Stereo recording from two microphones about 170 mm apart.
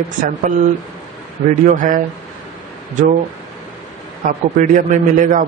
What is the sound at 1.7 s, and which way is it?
Speech, 50° right (ahead or behind).